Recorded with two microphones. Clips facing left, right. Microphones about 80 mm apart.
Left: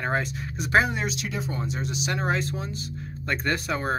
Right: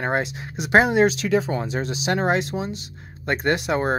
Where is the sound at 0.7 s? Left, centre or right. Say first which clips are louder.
Right 7 dB; right.